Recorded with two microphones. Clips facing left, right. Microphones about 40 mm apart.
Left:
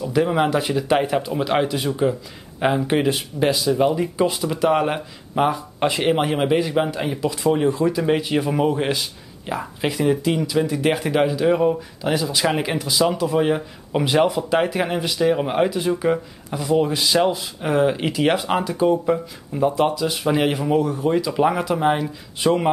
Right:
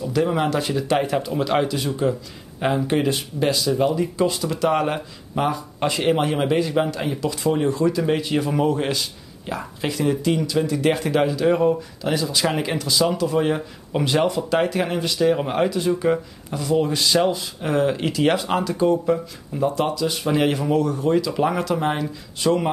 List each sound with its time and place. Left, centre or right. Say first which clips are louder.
0.0 s speech: left 2 dB; centre